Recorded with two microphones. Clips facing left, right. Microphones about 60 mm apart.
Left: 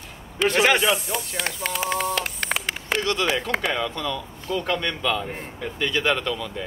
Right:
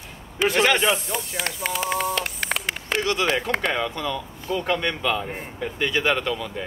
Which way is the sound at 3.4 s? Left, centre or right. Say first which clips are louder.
Right 1 dB; centre.